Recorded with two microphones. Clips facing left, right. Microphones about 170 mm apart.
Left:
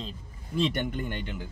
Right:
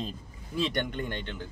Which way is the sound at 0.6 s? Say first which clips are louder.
Left 2 dB; 5° left (ahead or behind).